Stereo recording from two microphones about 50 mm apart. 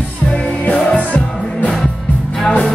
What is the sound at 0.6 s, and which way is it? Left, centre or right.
Music, left.